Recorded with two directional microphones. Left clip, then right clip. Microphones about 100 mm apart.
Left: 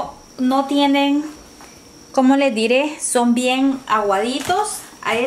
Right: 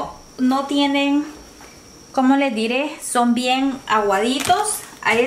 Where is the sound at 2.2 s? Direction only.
30° left (ahead or behind); by 3.9 s 15° left (ahead or behind).